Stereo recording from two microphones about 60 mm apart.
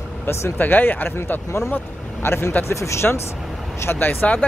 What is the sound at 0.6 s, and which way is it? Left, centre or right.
Speech, left.